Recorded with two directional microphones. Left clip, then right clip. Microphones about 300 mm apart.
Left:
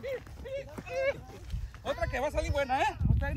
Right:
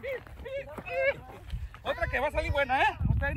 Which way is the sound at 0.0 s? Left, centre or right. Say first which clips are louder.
Right 1 dB; centre.